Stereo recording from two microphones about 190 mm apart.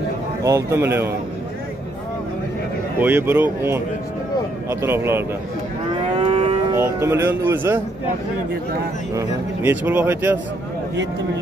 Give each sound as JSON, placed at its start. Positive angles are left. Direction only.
{"t": 0.4, "sound": "speech", "side_deg": -15}
{"t": 3.0, "sound": "speech", "side_deg": -10}
{"t": 6.1, "sound": "livestock", "side_deg": -30}
{"t": 6.7, "sound": "speech", "side_deg": -15}
{"t": 9.1, "sound": "speech", "side_deg": -15}